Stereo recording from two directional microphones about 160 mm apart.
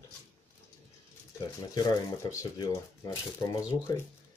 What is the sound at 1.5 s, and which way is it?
Speech, 25° left (ahead or behind).